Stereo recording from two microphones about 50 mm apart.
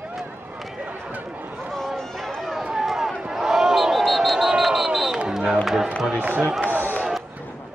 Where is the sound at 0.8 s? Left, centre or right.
Right.